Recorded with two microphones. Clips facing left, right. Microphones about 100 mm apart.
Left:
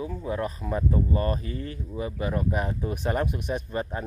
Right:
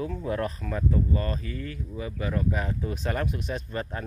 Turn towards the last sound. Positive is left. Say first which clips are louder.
# left 3 dB
turn(degrees=20)  # may be behind; listen again after turning